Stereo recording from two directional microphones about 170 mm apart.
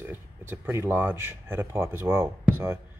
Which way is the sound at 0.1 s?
15° right (ahead or behind).